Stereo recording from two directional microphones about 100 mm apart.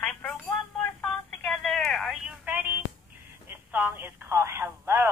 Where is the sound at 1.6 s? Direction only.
Centre (ahead or behind).